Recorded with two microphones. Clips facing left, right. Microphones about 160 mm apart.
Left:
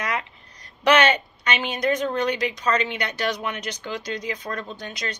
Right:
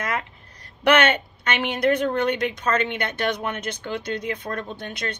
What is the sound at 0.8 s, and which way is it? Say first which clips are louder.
A woman's voice: even; 55° right (ahead or behind).